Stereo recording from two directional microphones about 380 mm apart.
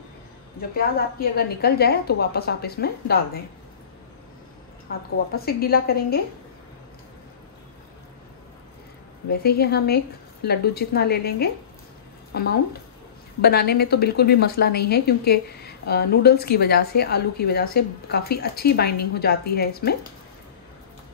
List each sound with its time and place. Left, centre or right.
0.6 s a woman's voice: left
5.3 s a woman's voice: left
9.3 s a woman's voice: left